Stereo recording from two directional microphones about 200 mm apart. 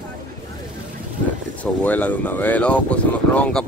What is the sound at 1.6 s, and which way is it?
Speech, 10° left (ahead or behind).